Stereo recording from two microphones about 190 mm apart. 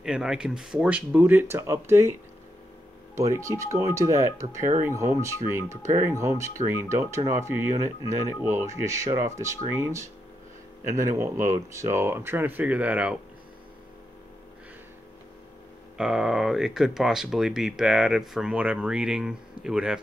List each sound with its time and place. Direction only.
0.0 s speech: 5° right (ahead or behind)
3.2 s speech: 15° right (ahead or behind)
16.0 s speech: centre (ahead or behind)